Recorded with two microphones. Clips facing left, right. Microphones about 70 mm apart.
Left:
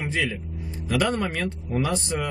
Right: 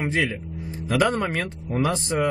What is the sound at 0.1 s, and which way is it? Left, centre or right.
Speech, right.